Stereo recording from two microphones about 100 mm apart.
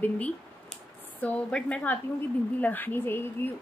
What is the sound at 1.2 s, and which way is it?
A woman's voice, 10° left (ahead or behind).